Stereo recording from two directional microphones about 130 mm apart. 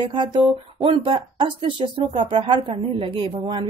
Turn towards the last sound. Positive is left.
turn(degrees=-40)  # may be behind; listen again after turning